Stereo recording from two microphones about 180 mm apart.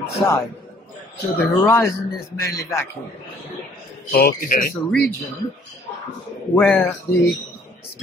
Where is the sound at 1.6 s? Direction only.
15° left (ahead or behind).